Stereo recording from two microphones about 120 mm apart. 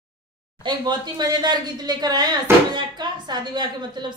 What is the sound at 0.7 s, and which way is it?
A woman's voice, 40° right (ahead or behind).